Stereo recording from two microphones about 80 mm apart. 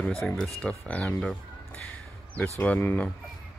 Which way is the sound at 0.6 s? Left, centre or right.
Centre.